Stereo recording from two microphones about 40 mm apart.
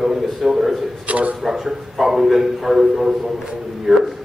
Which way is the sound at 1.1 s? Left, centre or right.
Right.